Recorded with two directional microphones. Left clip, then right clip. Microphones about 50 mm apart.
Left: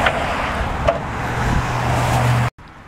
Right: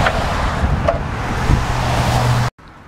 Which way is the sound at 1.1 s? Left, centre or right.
Right.